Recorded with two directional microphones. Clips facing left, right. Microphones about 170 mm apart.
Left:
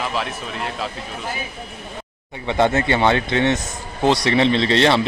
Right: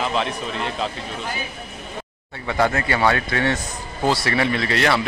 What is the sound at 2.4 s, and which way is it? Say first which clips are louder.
A man's voice: left 3 dB; 25° left (ahead or behind).